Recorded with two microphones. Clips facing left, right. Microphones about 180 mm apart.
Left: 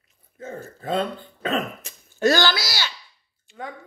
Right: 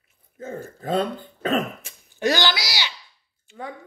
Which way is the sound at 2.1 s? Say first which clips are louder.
Left 3 dB; 15° right (ahead or behind).